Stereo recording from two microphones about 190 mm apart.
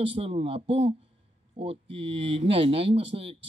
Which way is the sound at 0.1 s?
30° right (ahead or behind).